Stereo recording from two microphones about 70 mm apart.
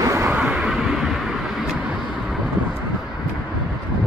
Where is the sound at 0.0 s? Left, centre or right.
Right.